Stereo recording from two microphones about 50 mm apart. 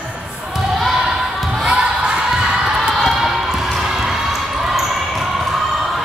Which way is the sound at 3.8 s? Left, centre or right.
Centre.